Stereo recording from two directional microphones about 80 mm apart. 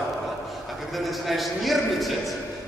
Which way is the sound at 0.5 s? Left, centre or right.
Centre.